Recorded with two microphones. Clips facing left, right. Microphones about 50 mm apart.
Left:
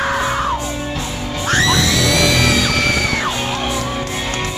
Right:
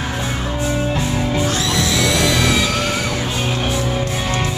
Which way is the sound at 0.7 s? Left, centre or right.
Centre.